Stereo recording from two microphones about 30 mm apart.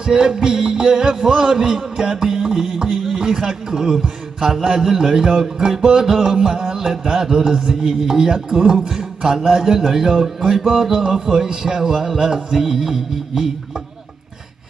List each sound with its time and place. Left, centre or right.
0.0 s a man's voice: right
10.9 s a man's voice: right